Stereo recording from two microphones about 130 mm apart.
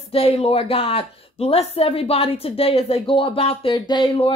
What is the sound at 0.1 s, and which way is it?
A woman's voice, 50° left (ahead or behind).